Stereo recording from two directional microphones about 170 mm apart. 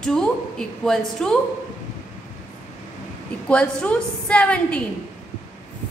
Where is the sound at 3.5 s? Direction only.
5° left (ahead or behind).